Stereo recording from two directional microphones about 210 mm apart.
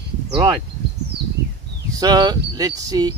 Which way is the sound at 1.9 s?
15° right (ahead or behind).